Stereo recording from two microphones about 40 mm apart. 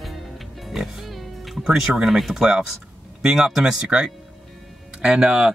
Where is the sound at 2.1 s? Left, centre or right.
Centre; by 5.5 s right.